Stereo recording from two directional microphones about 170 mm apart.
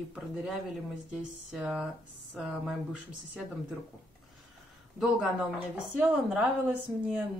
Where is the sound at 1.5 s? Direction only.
5° right (ahead or behind).